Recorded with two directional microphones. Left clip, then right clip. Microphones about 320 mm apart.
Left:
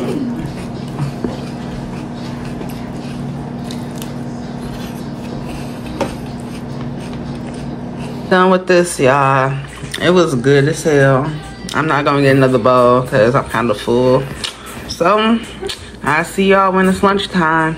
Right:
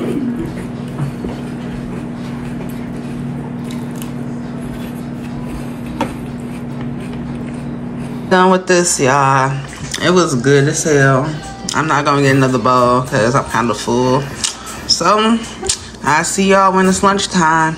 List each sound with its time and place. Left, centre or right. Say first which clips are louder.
8.3 s speech: even; centre